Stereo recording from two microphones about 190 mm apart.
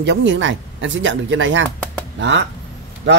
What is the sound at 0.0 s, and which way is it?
A man's voice, 70° right (ahead or behind).